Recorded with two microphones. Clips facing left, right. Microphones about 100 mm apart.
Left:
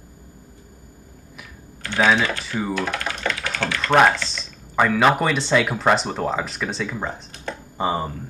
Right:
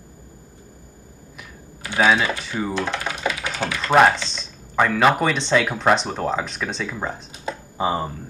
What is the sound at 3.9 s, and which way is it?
Speech, centre (ahead or behind).